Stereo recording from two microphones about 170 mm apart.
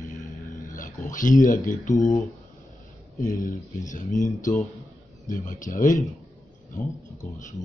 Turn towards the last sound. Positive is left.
turn(degrees=45)  # may be behind; listen again after turning